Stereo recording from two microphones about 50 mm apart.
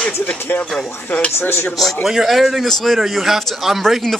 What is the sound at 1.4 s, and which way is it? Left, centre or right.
Speech, left.